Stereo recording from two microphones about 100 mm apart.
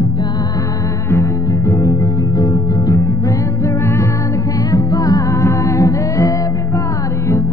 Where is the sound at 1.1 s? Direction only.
30° left (ahead or behind).